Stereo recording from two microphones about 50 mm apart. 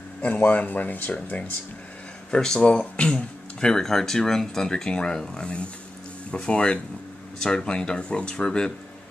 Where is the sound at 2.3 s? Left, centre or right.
Centre.